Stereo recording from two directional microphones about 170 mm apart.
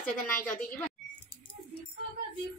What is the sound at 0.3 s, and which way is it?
Speech, 10° left (ahead or behind).